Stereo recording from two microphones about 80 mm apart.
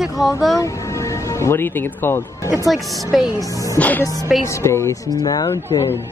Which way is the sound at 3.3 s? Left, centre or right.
Left.